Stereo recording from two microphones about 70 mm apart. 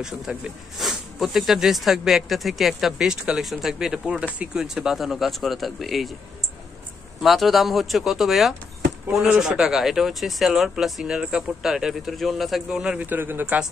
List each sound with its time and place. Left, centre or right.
0.0 s speech: centre
7.2 s speech: centre
12.6 s speech: centre
13.0 s speech: right